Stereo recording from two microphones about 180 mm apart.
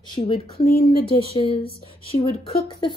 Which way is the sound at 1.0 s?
30° left (ahead or behind).